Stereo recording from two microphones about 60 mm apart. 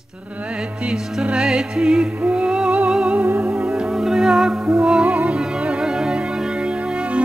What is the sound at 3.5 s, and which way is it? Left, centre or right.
Music, centre.